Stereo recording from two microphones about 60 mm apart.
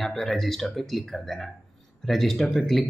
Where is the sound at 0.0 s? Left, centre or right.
Centre.